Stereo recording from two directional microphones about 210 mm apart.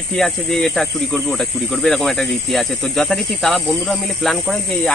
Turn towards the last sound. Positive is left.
turn(degrees=0)  # may be behind; listen again after turning